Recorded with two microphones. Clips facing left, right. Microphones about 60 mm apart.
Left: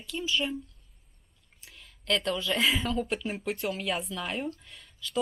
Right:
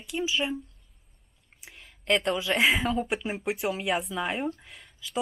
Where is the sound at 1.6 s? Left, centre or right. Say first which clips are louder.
Right 3 dB; centre.